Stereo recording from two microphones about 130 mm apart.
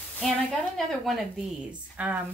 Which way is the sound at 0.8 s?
Centre (ahead or behind).